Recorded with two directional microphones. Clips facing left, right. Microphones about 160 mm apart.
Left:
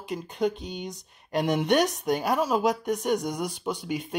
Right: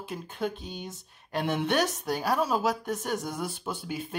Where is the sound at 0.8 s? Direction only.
15° left (ahead or behind).